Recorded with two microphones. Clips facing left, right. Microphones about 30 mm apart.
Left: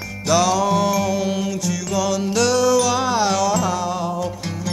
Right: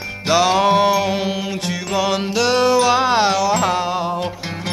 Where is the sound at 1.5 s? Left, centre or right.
Right.